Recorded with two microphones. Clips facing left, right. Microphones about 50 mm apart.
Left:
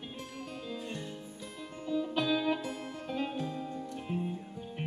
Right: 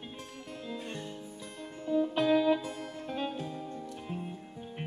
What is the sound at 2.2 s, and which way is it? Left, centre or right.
Music, right.